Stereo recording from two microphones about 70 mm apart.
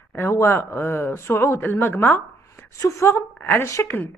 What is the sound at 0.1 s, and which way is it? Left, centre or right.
A woman's voice, left.